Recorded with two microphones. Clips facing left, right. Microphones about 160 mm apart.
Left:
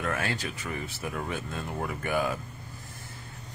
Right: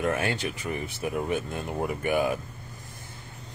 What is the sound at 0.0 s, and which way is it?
Speech, 20° right (ahead or behind).